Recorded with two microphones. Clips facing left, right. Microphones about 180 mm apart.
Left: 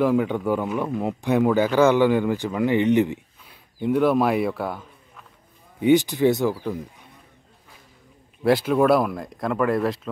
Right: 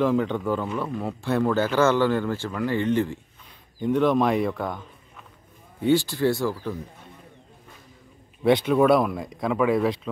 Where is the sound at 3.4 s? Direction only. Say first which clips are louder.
Even; 5° left (ahead or behind).